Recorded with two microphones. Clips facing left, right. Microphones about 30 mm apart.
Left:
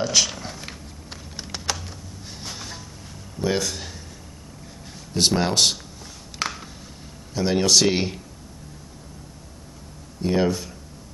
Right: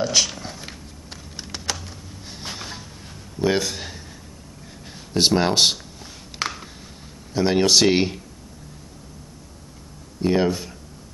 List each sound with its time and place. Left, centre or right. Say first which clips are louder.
0.0 s speech: even; centre
1.3 s typing: even; centre
2.4 s a sound: right 3 dB; centre
3.3 s speech: right 3 dB; centre
5.1 s speech: right 2 dB; centre
6.4 s a sound: right 1 dB; centre
7.3 s speech: right 2 dB; centre
10.2 s speech: right 2 dB; centre